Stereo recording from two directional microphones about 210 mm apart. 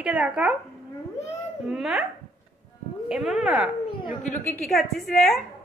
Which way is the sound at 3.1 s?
Centre (ahead or behind).